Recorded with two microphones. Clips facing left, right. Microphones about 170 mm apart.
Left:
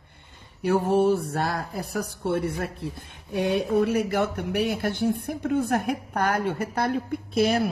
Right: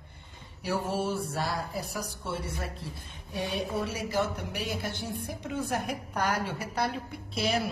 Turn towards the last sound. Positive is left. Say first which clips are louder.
# left 7 dB
turn(degrees=50)  # may be behind; listen again after turning